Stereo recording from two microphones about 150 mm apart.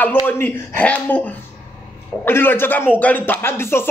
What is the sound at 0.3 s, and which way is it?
A man's voice, 10° left (ahead or behind).